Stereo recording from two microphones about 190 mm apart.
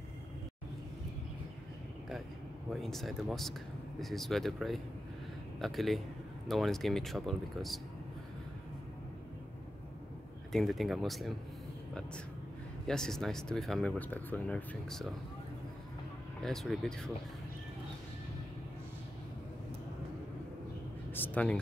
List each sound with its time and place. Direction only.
2.7 s speech: centre (ahead or behind)
10.5 s speech: centre (ahead or behind)
12.8 s speech: 5° left (ahead or behind)
16.4 s speech: centre (ahead or behind)
21.1 s a sound: 10° left (ahead or behind)